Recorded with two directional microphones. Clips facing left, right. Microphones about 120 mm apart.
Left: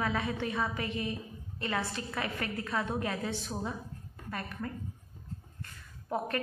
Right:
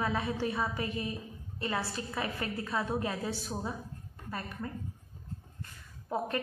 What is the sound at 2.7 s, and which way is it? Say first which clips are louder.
A woman's voice: even; 5° right (ahead or behind).